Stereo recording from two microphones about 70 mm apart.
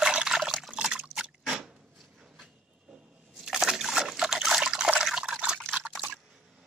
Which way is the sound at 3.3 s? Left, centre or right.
Centre.